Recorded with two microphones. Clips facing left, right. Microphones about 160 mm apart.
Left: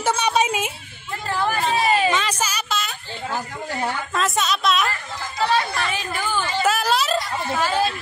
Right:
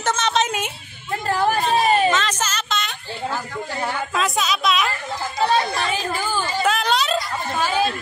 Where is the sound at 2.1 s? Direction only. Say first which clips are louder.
Right 1 dB; 10° left (ahead or behind).